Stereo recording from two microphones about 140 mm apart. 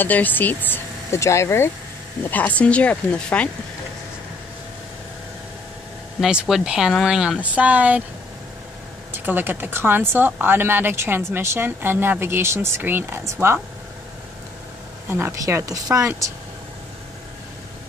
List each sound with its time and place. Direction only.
0.0 s speech: 10° left (ahead or behind)
6.2 s speech: 5° right (ahead or behind)
9.1 s speech: 15° right (ahead or behind)
15.0 s a woman's voice: 15° right (ahead or behind)